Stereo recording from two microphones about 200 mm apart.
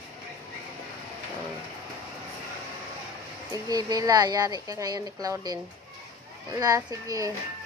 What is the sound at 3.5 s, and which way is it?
Speech, 20° right (ahead or behind).